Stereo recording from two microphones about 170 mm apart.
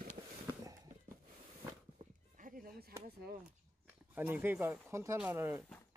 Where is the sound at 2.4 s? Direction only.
55° right (ahead or behind).